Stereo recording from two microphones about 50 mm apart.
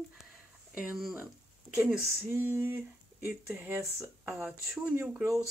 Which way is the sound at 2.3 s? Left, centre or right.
Right.